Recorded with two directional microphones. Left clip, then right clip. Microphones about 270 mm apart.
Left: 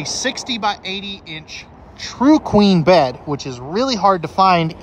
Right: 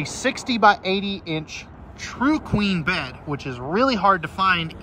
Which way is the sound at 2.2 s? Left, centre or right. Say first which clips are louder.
Left 9 dB; centre.